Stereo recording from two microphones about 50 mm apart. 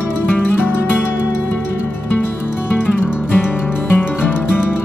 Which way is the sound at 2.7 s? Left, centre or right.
Left.